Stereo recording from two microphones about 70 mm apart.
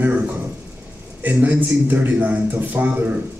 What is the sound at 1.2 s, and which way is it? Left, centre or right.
A man's voice, right.